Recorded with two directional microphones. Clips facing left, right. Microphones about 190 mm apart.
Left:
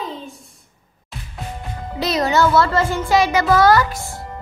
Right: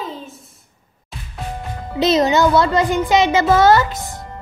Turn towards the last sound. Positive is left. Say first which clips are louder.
# right 1 dB
turn(degrees=-20)  # may be behind; listen again after turning